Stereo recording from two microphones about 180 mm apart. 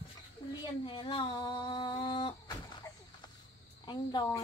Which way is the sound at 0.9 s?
25° left (ahead or behind).